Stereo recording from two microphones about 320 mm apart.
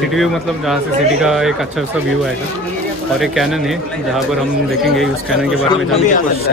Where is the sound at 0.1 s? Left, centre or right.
Centre.